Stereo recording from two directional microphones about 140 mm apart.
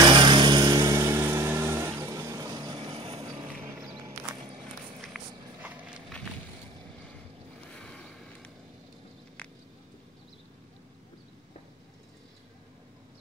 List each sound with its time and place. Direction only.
0.0 s vehicle: 35° right (ahead or behind)
4.4 s walk: centre (ahead or behind)
5.6 s horse: 10° right (ahead or behind)
7.7 s boat: 5° left (ahead or behind)